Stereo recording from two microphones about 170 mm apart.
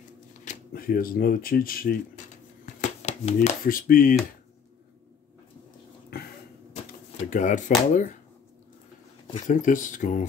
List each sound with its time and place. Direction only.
0.5 s speech: 55° left (ahead or behind)
6.9 s a sound: 50° left (ahead or behind)
7.9 s speech: 45° left (ahead or behind)
9.5 s speech: 50° left (ahead or behind)